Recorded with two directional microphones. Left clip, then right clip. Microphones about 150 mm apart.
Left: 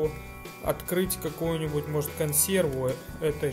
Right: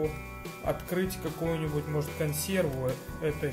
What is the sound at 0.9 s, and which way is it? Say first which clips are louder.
Speech: left 3 dB; 45° left (ahead or behind).